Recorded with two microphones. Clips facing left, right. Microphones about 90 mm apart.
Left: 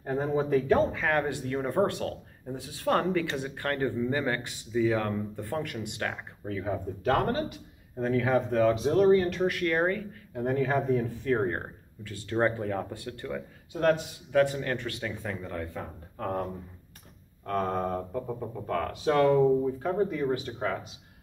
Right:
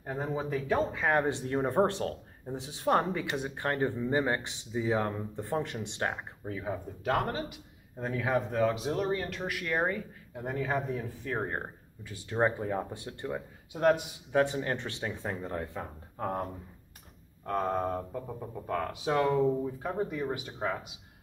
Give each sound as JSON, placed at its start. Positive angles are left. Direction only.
{"t": 0.0, "sound": "speech", "side_deg": -5}
{"t": 1.0, "sound": "speech", "side_deg": -20}
{"t": 6.4, "sound": "a man's voice", "side_deg": -10}
{"t": 14.3, "sound": "speech", "side_deg": -25}
{"t": 15.8, "sound": "a man's voice", "side_deg": -15}
{"t": 17.5, "sound": "a man's voice", "side_deg": -10}